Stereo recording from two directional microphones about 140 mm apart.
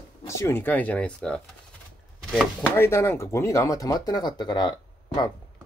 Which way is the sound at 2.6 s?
20° left (ahead or behind).